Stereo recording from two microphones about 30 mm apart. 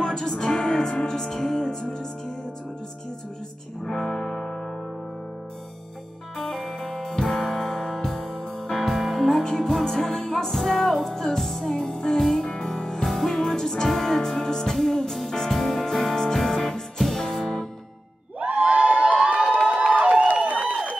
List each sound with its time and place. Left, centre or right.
0.0 s music: centre
3.8 s music: centre
6.3 s music: centre
7.2 s music: left
8.8 s music: centre
9.4 s music: left
9.7 s music: centre
11.6 s music: centre
13.5 s music: centre
18.4 s crowd: right
19.2 s a sound: right